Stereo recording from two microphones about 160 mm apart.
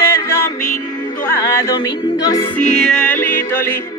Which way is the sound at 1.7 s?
25° left (ahead or behind).